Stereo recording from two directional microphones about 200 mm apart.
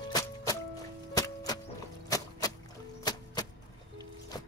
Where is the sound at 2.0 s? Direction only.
20° left (ahead or behind).